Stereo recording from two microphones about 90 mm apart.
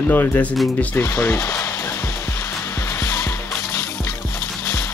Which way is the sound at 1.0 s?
30° left (ahead or behind).